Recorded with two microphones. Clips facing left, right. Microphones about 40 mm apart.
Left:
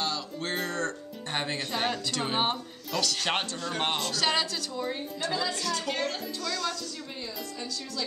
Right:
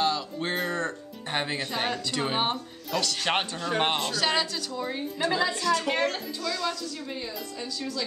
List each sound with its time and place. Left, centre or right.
0.0 s a woman's voice: centre
3.3 s a man's voice: centre
4.1 s a woman's voice: centre
5.2 s a man's voice: right
6.4 s a woman's voice: centre